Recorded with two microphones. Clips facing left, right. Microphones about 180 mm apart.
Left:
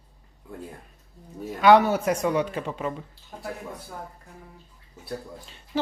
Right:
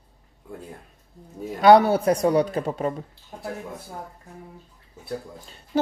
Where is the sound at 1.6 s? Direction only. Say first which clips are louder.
Right 3 dB; 35° right (ahead or behind).